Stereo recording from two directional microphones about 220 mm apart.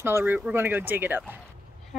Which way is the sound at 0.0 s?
10° right (ahead or behind).